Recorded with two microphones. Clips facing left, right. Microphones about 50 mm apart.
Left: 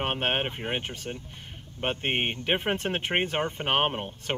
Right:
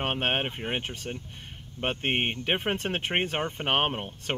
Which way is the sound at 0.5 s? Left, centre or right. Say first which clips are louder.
Even; centre.